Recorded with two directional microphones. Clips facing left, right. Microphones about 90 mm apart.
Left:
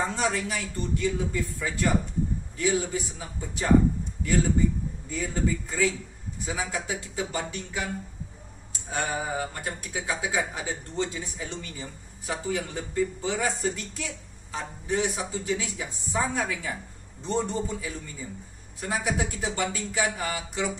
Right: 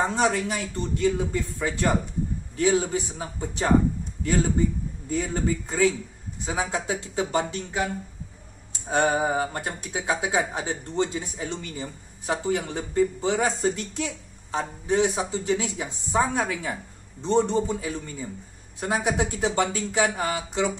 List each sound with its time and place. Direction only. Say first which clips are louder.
0.1 s a woman's voice: right 4 dB; 25° right (ahead or behind)
5.1 s a woman's voice: right 3 dB; 35° right (ahead or behind)